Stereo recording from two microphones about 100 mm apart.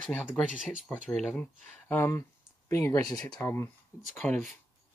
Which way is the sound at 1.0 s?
5° left (ahead or behind).